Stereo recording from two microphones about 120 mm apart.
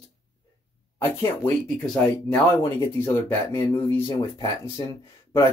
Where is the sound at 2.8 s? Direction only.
25° left (ahead or behind).